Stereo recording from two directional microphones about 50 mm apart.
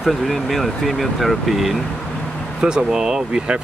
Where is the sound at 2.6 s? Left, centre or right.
Centre.